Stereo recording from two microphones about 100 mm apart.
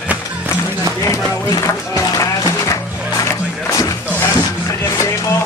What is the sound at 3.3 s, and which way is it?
Music, 30° left (ahead or behind).